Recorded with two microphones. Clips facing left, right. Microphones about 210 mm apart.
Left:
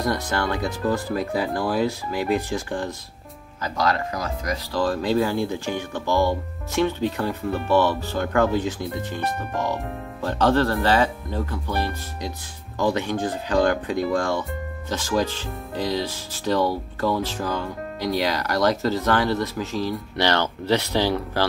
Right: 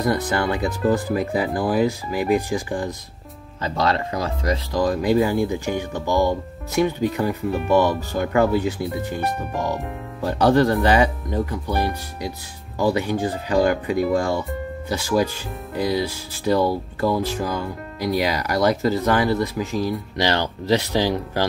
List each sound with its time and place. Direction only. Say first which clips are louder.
0.1 s speech: right 3 dB; 10° right (ahead or behind)
3.6 s speech: right 2 dB; 25° right (ahead or behind)
4.7 s speech: right 2 dB; 15° right (ahead or behind)